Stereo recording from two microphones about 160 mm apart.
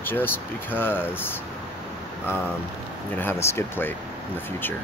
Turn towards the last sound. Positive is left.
turn(degrees=15)  # may be behind; listen again after turning